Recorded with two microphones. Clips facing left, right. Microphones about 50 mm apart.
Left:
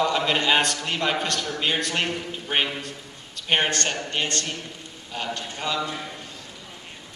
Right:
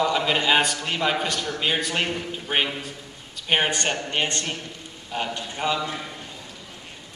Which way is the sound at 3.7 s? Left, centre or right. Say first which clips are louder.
Right 1 dB; centre.